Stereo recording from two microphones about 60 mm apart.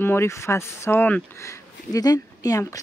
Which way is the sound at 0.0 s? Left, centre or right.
Left.